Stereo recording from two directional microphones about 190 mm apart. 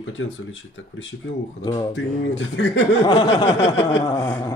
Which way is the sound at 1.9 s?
75° left (ahead or behind).